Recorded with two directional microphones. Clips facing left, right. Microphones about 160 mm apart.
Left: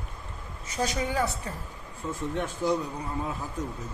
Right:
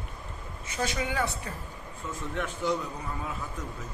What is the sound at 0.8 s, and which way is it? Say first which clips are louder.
Speech: left 2 dB; 35° left (ahead or behind).